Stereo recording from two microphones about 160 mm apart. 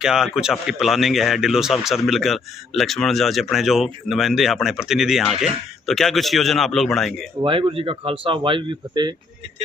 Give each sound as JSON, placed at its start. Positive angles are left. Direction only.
{"t": 0.0, "sound": "speech", "side_deg": -5}
{"t": 7.4, "sound": "speech", "side_deg": -30}